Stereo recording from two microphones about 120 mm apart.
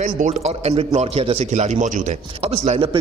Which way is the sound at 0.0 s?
65° right (ahead or behind).